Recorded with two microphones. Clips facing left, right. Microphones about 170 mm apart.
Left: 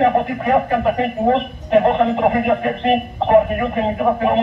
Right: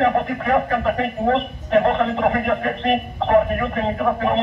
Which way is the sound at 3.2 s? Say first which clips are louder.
Left 3 dB; 20° left (ahead or behind).